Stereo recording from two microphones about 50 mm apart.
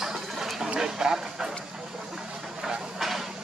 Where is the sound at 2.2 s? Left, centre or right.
Centre.